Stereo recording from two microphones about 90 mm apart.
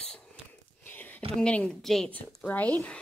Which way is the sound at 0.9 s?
20° left (ahead or behind).